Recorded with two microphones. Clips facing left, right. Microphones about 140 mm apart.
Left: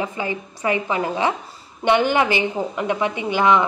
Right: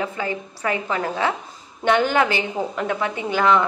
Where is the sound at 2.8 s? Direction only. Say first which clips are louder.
Left 4 dB; 15° left (ahead or behind).